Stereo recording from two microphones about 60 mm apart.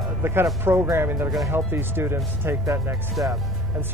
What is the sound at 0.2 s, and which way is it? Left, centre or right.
Speech, right.